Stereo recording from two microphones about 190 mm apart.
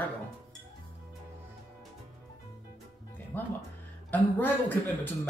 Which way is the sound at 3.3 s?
10° left (ahead or behind).